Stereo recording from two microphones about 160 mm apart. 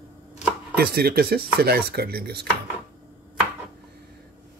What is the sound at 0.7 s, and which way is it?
Chopping, 75° right (ahead or behind).